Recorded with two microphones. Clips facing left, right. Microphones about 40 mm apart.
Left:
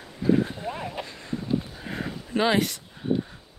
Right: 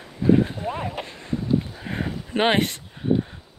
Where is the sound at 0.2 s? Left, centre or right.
Right.